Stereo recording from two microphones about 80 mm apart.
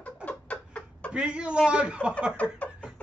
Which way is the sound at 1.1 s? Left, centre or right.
Centre.